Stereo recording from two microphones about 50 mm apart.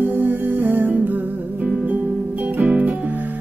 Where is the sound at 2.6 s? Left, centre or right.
Right.